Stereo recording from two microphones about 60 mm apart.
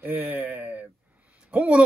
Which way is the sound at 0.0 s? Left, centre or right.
Right.